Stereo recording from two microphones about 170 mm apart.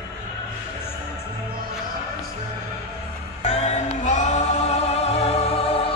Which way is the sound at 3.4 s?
40° left (ahead or behind).